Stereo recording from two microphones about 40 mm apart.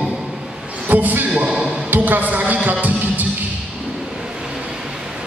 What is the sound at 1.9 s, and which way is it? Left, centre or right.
Music, right.